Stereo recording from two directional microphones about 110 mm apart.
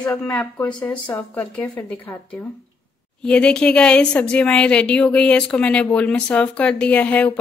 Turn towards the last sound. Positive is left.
turn(degrees=15)  # may be behind; listen again after turning